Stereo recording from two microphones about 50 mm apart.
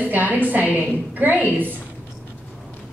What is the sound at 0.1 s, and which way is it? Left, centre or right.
A woman's voice, right.